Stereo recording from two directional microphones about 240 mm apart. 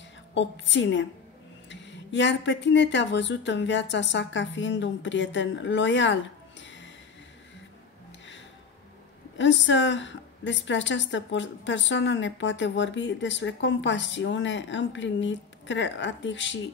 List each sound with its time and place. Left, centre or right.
0.3 s a woman's voice: left
6.6 s a sound: left
9.4 s a woman's voice: left